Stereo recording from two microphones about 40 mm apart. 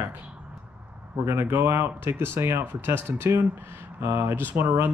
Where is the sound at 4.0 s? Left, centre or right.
Right.